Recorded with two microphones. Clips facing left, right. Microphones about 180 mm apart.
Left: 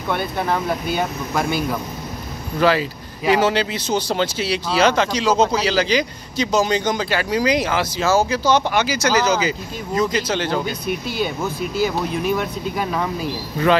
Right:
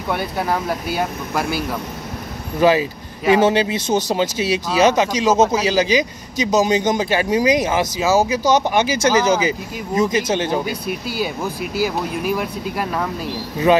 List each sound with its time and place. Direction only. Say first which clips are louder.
0.1 s speech: even; 5° right (ahead or behind)
2.6 s speech: right 3 dB; 15° right (ahead or behind); by 13.3 s centre (ahead or behind)